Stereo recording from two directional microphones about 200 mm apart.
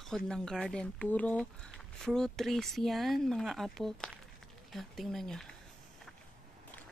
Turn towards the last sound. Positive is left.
turn(degrees=0)  # may be behind; listen again after turning